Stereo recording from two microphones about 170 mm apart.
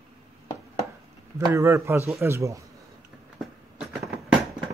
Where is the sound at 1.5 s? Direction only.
15° right (ahead or behind).